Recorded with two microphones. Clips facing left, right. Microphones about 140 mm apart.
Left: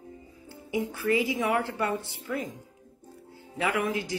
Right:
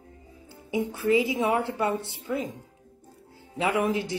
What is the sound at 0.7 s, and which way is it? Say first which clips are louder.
A woman's voice: right 3 dB; 20° right (ahead or behind).